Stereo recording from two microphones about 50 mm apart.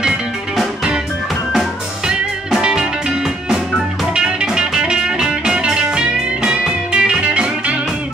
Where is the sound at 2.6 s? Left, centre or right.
Centre.